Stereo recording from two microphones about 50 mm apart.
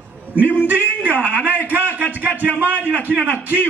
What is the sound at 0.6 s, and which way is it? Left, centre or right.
Speech, right.